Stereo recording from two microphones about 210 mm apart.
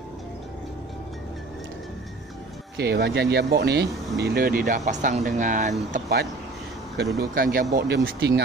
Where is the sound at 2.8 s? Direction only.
50° right (ahead or behind).